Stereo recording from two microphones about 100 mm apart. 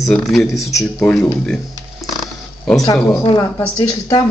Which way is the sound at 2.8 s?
35° left (ahead or behind).